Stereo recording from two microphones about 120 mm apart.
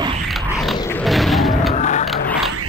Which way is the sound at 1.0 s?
Centre (ahead or behind).